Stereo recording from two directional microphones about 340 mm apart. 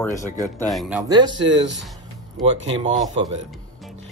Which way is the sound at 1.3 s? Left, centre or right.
Right.